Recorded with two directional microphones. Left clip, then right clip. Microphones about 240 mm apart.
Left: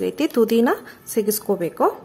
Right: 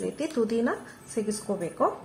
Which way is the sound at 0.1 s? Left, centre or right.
Left.